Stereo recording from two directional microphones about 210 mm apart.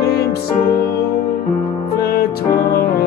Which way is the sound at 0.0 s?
50° left (ahead or behind).